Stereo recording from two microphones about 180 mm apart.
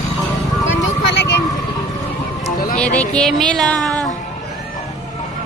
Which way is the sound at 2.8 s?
5° left (ahead or behind).